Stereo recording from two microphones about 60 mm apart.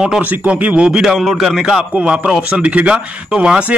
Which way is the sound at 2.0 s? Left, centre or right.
Centre.